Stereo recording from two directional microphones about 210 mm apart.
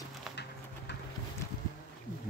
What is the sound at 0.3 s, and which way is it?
Horse, centre (ahead or behind).